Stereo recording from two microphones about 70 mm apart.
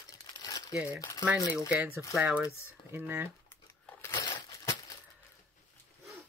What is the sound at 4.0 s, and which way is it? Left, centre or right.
Crushing, left.